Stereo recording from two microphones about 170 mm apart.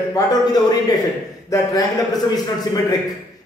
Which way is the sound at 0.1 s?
25° left (ahead or behind).